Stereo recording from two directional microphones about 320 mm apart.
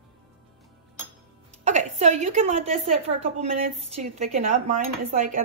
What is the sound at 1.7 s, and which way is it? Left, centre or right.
A woman's voice, right.